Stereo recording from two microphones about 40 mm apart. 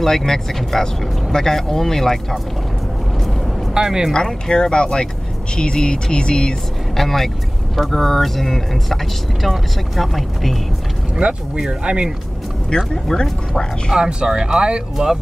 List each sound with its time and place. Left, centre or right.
0.0 s speech: centre
3.7 s speech: centre
4.5 s speech: left
7.0 s speech: centre
11.1 s speech: right
12.6 s speech: centre
13.9 s speech: centre